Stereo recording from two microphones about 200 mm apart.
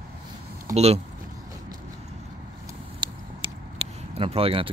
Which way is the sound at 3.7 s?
30° right (ahead or behind).